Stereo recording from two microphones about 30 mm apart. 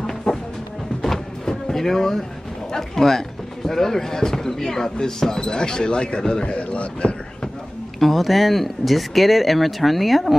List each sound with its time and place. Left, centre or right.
0.3 s music: centre
1.4 s a sound: centre
2.7 s speech: centre
6.4 s a man's voice: left
8.0 s speech: centre